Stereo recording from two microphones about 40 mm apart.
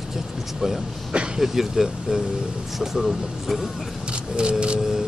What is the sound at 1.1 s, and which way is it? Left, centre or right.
Vehicle, right.